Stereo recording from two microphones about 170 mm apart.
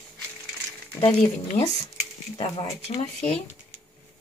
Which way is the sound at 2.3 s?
40° left (ahead or behind).